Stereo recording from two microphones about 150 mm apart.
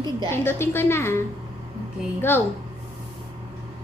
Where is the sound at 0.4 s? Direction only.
15° left (ahead or behind).